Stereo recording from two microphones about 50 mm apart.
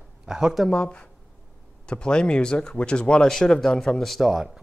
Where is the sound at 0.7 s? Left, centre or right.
Left; by 4.4 s centre.